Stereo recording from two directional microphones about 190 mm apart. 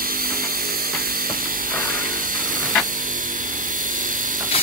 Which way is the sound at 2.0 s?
45° right (ahead or behind).